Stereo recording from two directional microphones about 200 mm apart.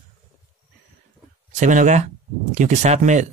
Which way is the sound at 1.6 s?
40° right (ahead or behind).